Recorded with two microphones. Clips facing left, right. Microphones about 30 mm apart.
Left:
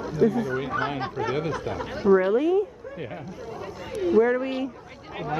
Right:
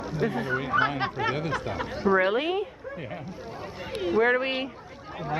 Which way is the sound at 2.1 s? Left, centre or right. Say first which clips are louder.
Left 3 dB; right.